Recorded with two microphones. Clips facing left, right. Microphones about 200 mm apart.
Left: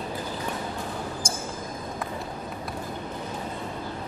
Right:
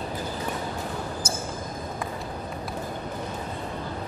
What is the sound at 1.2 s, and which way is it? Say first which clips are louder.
Basketball bounce: right 1 dB; 5° right (ahead or behind).